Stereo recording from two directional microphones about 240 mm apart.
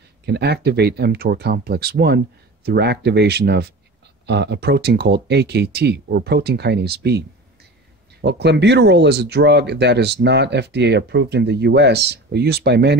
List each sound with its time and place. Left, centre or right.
0.2 s speech: right